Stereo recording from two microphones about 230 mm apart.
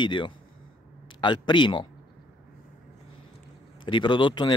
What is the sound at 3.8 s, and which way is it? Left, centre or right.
Speech, centre.